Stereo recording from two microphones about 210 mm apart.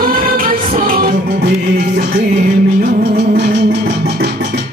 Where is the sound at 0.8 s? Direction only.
40° right (ahead or behind).